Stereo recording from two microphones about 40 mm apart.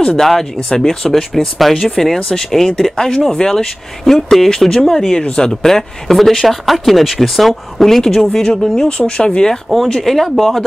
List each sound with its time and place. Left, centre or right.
0.0 s speech: centre